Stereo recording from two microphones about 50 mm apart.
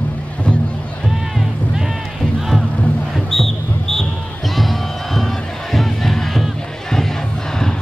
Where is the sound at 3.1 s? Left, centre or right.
Centre.